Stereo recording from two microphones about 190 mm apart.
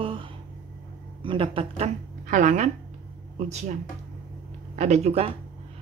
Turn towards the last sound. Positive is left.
turn(degrees=-35)  # may be behind; listen again after turning